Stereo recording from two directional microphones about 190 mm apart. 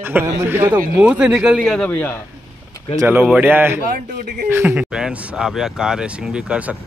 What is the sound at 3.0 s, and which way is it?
A man's voice, 10° right (ahead or behind).